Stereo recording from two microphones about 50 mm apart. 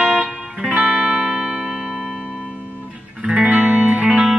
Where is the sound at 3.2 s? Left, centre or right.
Right.